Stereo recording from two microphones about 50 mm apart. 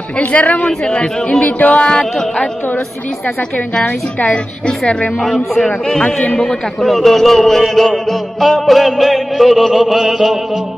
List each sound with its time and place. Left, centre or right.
0.2 s speech: left
1.4 s a sound: left
1.8 s a man's voice: centre
4.2 s speech: left
5.2 s a man's voice: centre
6.9 s music: centre